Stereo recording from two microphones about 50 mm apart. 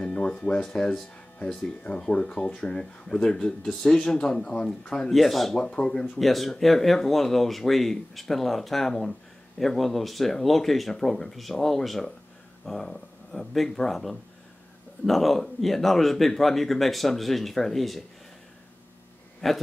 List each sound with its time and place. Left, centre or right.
0.0 s a sound: centre
0.7 s speech: centre
5.1 s speech: centre
5.6 s speech: centre
19.4 s speech: centre